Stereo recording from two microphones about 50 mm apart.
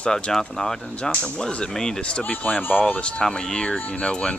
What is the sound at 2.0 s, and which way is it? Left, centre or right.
Speech, left.